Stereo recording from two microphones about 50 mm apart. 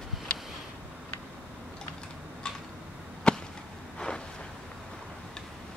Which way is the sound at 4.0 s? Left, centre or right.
Centre.